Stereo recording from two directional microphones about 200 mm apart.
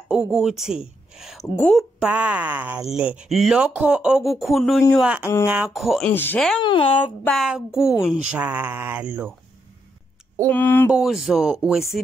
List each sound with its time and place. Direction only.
0.1 s a woman's voice: 5° right (ahead or behind)
6.6 s speech: 25° left (ahead or behind)
7.0 s speech: centre (ahead or behind)
8.3 s mantra: 5° right (ahead or behind)
10.4 s a sound: 10° left (ahead or behind)
10.9 s speech: 5° right (ahead or behind)